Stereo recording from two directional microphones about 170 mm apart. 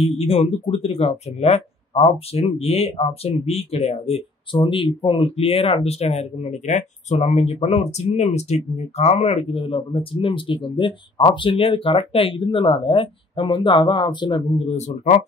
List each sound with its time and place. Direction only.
0.0 s speech: 35° left (ahead or behind)